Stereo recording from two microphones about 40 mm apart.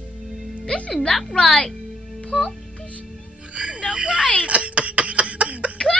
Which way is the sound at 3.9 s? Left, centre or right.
Right.